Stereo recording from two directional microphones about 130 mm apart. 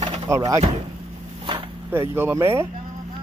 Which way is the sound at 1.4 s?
45° right (ahead or behind).